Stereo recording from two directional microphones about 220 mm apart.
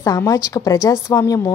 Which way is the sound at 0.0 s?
15° left (ahead or behind).